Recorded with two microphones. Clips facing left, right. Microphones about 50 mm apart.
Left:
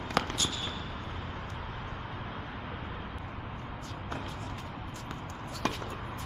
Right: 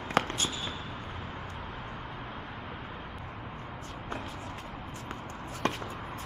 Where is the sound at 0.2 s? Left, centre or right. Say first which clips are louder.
Right 1 dB; centre.